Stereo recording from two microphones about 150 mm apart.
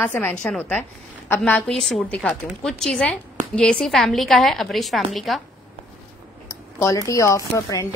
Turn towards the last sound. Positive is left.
turn(degrees=20)  # may be behind; listen again after turning